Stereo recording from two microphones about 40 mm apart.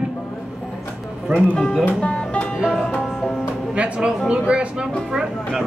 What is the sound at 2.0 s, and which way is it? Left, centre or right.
Music, left.